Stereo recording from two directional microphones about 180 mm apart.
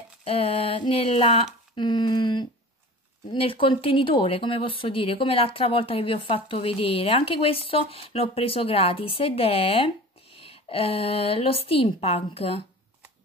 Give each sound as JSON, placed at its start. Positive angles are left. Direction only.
{"t": 0.2, "sound": "speech", "side_deg": 30}